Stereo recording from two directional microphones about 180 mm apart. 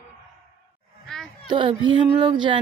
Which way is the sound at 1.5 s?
30° right (ahead or behind).